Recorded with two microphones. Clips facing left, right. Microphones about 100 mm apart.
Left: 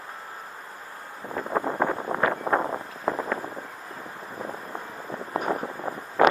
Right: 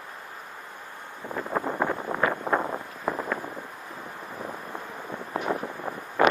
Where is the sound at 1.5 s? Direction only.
35° left (ahead or behind).